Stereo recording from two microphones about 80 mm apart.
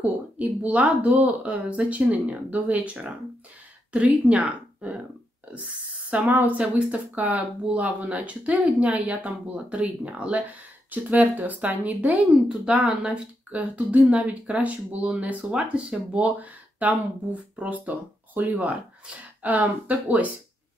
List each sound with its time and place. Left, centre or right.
0.0 s speech: centre
6.0 s a woman's voice: centre